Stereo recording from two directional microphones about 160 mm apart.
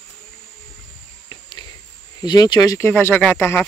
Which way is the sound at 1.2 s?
30° left (ahead or behind).